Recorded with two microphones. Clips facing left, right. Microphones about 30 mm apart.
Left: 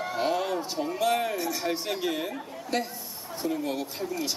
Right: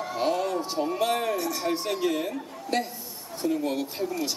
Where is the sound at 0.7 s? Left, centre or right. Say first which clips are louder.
Right 3 dB; centre.